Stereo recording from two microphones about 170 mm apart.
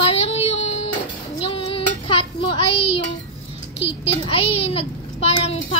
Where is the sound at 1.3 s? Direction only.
35° left (ahead or behind).